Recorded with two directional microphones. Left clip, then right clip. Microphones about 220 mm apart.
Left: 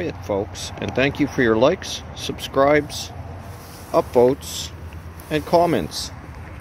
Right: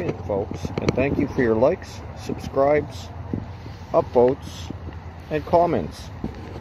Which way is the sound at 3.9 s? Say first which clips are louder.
Left 2 dB; 20° left (ahead or behind).